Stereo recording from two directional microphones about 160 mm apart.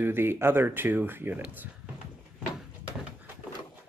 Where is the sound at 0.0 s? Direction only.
15° right (ahead or behind).